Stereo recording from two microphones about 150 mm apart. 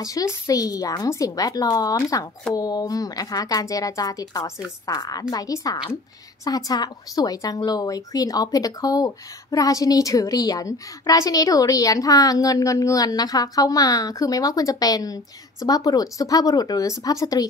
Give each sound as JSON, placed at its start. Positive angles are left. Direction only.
{"t": 0.0, "sound": "a woman's voice", "side_deg": 25}